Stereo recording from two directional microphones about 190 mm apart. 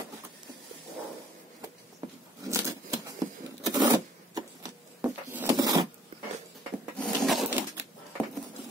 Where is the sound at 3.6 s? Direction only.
20° right (ahead or behind).